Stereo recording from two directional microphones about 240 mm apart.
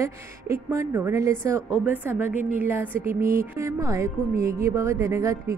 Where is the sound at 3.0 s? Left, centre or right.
Right.